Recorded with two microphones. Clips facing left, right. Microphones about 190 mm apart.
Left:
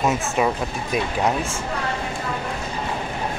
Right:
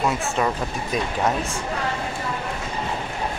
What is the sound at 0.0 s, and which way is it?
Speech, 20° left (ahead or behind).